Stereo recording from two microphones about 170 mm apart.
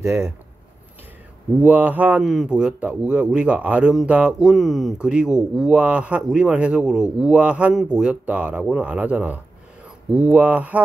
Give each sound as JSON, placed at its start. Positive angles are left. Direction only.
{"t": 0.0, "sound": "a man's voice", "side_deg": -15}
{"t": 1.5, "sound": "a man's voice", "side_deg": -10}